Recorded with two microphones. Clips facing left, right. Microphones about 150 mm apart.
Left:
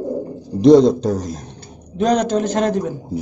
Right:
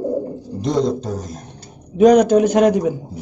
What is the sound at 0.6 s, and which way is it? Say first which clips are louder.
Speech: left 9 dB; 75° left (ahead or behind).